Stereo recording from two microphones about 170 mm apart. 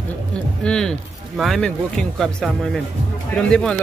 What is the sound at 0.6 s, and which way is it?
Speech, 5° left (ahead or behind).